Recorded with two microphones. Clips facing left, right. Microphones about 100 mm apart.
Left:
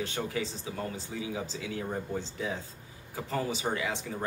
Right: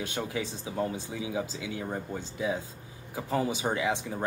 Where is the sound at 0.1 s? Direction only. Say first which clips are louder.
Even; 20° right (ahead or behind).